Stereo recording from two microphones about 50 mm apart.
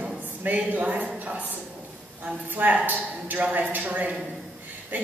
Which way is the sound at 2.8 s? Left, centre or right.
Right.